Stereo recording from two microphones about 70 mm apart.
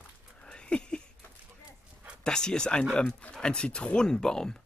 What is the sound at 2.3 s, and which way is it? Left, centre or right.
Speech, centre.